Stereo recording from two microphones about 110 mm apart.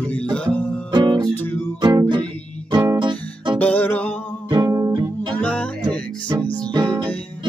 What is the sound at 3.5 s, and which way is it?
Music, 15° left (ahead or behind).